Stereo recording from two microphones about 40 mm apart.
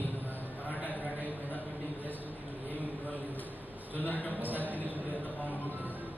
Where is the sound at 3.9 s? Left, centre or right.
Left.